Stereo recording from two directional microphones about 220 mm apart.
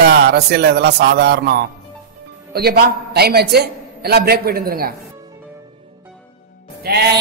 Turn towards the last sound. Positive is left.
turn(degrees=-45)  # may be behind; listen again after turning